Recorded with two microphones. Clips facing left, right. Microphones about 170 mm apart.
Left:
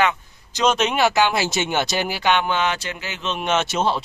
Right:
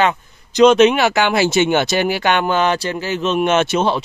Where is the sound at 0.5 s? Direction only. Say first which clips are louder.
Right 10 dB; 65° right (ahead or behind).